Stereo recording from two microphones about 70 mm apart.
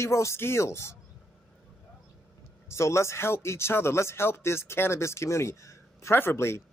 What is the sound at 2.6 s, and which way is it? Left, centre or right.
Speech, left.